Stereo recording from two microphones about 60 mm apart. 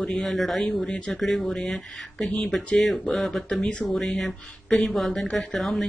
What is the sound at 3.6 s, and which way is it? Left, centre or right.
Speech, centre.